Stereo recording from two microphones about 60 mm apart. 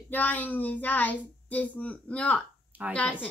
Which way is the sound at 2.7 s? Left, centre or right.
Right.